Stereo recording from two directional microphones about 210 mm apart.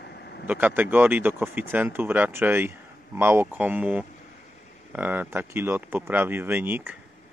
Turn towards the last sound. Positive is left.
turn(degrees=-10)  # may be behind; listen again after turning